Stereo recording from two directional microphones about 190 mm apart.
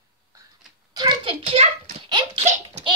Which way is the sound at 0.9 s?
25° right (ahead or behind).